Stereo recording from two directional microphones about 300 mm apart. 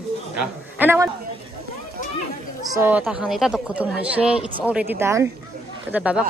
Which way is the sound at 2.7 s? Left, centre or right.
Centre.